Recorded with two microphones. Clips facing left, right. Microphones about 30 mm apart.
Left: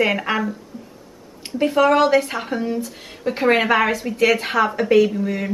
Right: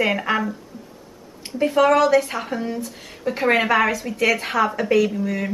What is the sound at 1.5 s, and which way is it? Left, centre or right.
Speech, centre.